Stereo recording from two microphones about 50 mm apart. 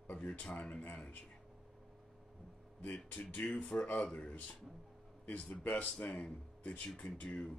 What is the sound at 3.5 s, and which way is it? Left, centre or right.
Speech, left.